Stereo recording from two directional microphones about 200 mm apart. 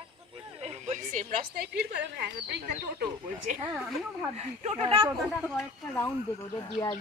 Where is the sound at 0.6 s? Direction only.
35° right (ahead or behind); by 2.6 s 55° right (ahead or behind).